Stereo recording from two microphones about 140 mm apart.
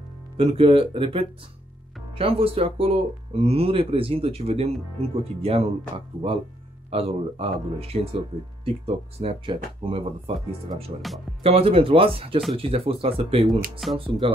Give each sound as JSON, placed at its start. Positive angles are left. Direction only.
{"t": 0.4, "sound": "speech", "side_deg": -45}
{"t": 11.1, "sound": "speech", "side_deg": 0}
{"t": 11.4, "sound": "speech", "side_deg": -45}